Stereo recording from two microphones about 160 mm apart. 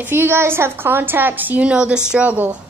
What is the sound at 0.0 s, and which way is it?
A woman's voice, 15° right (ahead or behind).